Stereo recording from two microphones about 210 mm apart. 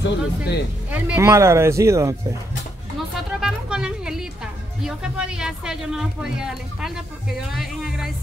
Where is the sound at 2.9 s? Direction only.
Centre (ahead or behind).